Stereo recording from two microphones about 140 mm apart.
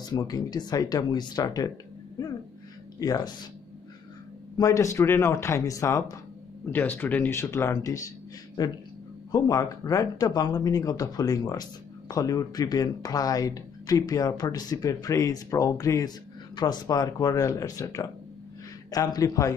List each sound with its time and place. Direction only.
0.0 s speech: 30° left (ahead or behind)
4.6 s speech: 25° left (ahead or behind)
9.3 s speech: 25° left (ahead or behind)